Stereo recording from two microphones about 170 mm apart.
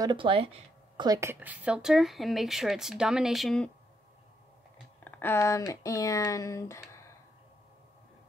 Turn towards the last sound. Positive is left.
turn(degrees=15)  # may be behind; listen again after turning